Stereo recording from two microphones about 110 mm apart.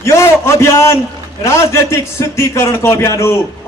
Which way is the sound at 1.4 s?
25° left (ahead or behind).